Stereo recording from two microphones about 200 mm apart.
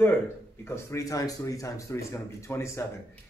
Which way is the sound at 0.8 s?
15° left (ahead or behind).